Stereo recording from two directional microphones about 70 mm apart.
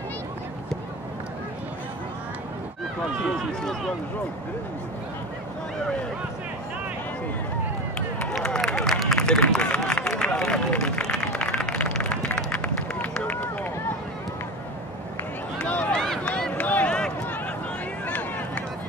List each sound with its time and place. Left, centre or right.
8.4 s a sound: centre
9.0 s run: centre
10.0 s clapping: centre
15.6 s run: centre